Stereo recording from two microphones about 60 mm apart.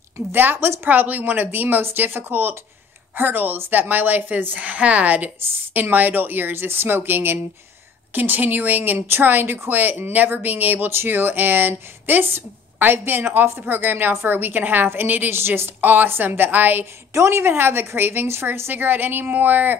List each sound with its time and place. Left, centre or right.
0.3 s speech: right
0.8 s speech: right
17.1 s a woman's voice: right